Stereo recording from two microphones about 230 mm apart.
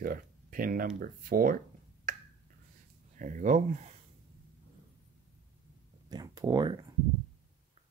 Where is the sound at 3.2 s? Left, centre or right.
Right.